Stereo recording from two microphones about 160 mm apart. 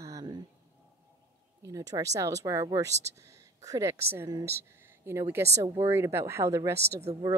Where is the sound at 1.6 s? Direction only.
20° right (ahead or behind).